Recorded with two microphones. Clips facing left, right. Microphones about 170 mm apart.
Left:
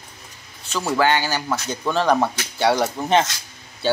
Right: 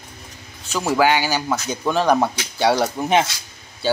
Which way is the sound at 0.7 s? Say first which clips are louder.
Right 2 dB; 10° right (ahead or behind).